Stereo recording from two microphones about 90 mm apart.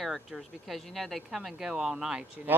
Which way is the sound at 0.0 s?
Centre (ahead or behind).